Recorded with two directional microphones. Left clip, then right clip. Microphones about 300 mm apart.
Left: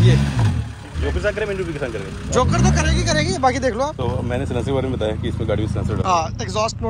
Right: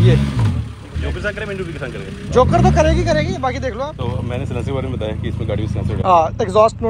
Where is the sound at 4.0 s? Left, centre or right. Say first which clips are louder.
Left 2 dB; left.